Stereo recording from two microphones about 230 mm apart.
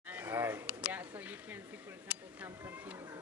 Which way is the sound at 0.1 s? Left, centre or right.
Centre.